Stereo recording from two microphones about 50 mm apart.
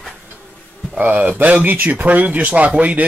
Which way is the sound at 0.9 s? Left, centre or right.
Right.